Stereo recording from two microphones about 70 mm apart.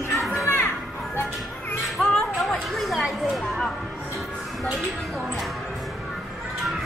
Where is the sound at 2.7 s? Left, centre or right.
Centre.